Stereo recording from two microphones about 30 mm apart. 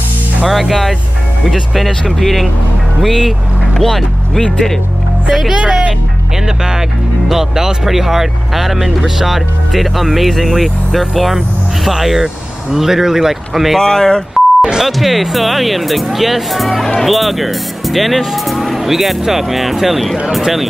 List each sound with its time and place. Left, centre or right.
0.5 s speech: centre
3.7 s speech: centre
5.5 s speech: right
13.7 s speech: centre
14.6 s speech: centre
14.9 s speech: centre